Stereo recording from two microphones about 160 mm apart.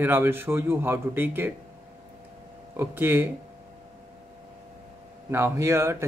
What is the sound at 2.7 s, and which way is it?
Speech, 15° right (ahead or behind).